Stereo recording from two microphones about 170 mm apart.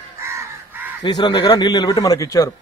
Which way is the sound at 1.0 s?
25° left (ahead or behind).